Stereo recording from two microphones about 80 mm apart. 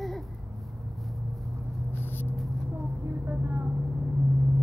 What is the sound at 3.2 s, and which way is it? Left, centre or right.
Vehicle, right.